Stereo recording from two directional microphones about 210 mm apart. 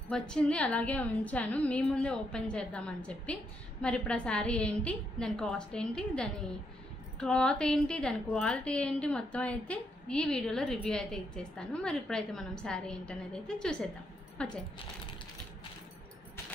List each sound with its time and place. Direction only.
0.1 s a woman's voice: 5° left (ahead or behind)